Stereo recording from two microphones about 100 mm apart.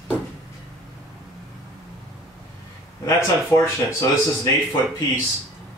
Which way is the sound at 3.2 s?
30° left (ahead or behind).